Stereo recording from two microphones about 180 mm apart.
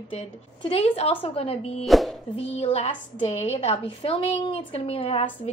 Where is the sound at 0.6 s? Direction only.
30° left (ahead or behind).